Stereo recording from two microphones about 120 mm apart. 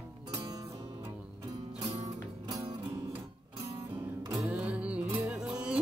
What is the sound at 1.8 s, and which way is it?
Music, 30° right (ahead or behind).